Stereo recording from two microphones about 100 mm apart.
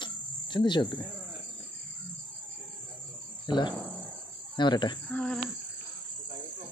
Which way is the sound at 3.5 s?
50° left (ahead or behind).